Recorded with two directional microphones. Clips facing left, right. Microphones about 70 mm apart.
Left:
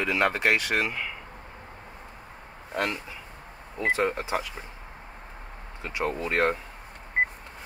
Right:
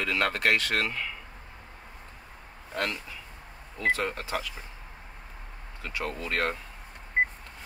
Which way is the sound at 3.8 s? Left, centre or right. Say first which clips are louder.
Left 3 dB; left.